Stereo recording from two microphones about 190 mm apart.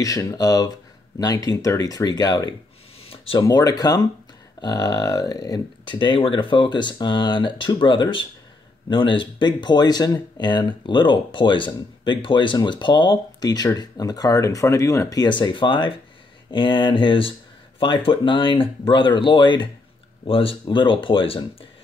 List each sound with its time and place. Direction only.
0.0 s speech: 15° left (ahead or behind)
3.1 s a sound: 30° left (ahead or behind)
3.4 s speech: 20° left (ahead or behind)